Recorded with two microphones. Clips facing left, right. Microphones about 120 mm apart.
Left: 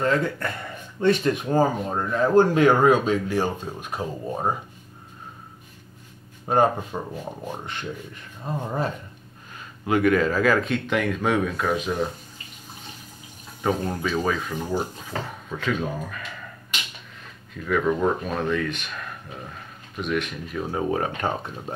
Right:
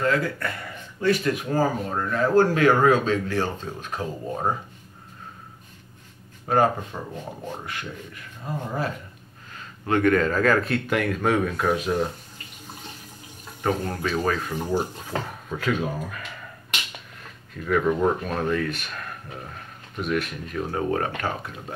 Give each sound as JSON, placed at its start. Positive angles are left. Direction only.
{"t": 0.0, "sound": "speech", "side_deg": 25}
{"t": 6.4, "sound": "speech", "side_deg": 20}
{"t": 9.8, "sound": "speech", "side_deg": 10}
{"t": 13.6, "sound": "speech", "side_deg": 5}
{"t": 17.6, "sound": "speech", "side_deg": -5}